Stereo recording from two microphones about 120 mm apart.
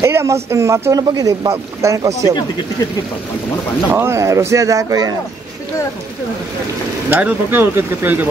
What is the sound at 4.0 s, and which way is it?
Speech, 25° right (ahead or behind).